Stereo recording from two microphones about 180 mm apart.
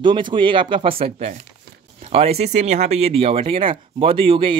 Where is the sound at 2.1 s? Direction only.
35° right (ahead or behind).